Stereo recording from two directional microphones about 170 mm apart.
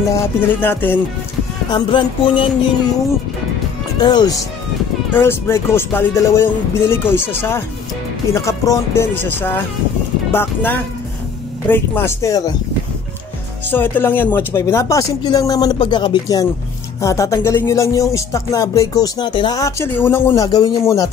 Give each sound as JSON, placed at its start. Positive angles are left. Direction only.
{"t": 0.1, "sound": "speech", "side_deg": 10}
{"t": 1.7, "sound": "music", "side_deg": 25}
{"t": 4.0, "sound": "music", "side_deg": 25}
{"t": 5.1, "sound": "speech", "side_deg": 15}
{"t": 13.7, "sound": "music", "side_deg": 10}